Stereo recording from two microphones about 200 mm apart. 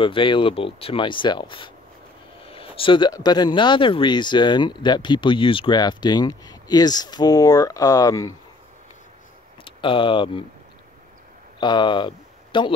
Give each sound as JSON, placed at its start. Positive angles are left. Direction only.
{"t": 0.0, "sound": "speech", "side_deg": 25}
{"t": 9.7, "sound": "speech", "side_deg": 25}
{"t": 11.6, "sound": "speech", "side_deg": 25}